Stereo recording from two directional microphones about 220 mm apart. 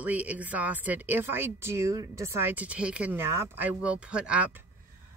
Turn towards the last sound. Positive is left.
turn(degrees=-10)  # may be behind; listen again after turning